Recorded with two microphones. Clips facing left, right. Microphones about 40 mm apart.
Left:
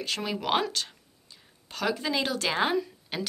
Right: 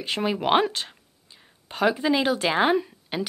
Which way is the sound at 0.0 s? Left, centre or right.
Right.